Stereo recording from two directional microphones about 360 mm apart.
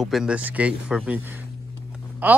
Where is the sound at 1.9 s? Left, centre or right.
Centre.